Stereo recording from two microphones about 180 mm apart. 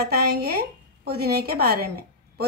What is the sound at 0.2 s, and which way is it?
Speech, 60° right (ahead or behind).